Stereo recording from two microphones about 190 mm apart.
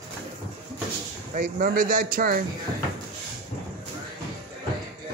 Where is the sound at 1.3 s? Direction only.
45° right (ahead or behind).